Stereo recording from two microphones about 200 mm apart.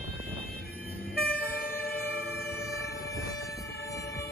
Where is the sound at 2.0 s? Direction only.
50° left (ahead or behind).